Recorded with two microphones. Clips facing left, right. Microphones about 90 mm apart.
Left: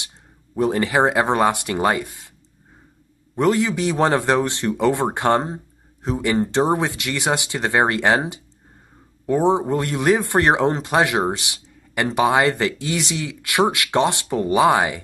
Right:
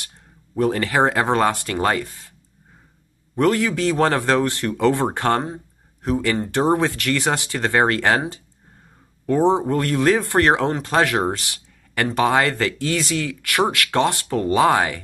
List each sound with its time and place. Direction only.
0.6 s speech: 15° left (ahead or behind)
3.3 s speech: 20° left (ahead or behind)
6.3 s speech: 30° left (ahead or behind)
6.6 s speech: 20° left (ahead or behind)
9.2 s speech: 15° left (ahead or behind)